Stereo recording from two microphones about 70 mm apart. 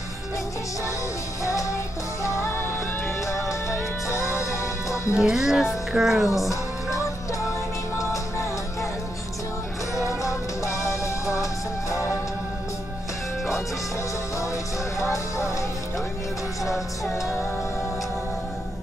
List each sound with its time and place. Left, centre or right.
1.4 s music: left
3.3 s music: left
5.2 s speech: centre
8.0 s music: left
9.9 s music: left
15.0 s music: left